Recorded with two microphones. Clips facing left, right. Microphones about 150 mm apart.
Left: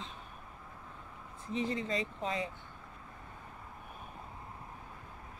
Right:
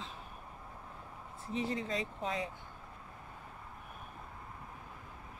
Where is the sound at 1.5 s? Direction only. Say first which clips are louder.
Left 1 dB; 5° right (ahead or behind).